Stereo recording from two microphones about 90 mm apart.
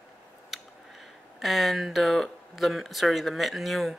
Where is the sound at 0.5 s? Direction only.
Centre (ahead or behind).